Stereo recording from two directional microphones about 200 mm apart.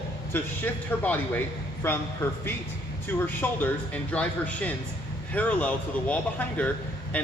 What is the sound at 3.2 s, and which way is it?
A man's voice, 10° left (ahead or behind).